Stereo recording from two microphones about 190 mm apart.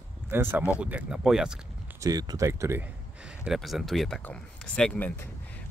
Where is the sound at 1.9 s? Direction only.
20° right (ahead or behind).